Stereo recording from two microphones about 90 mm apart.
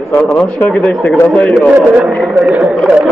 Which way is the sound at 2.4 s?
15° right (ahead or behind).